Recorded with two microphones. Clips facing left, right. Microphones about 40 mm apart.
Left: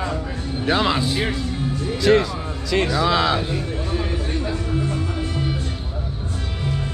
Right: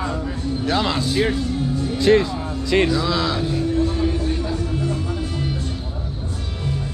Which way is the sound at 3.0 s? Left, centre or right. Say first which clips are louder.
Left 2 dB; left.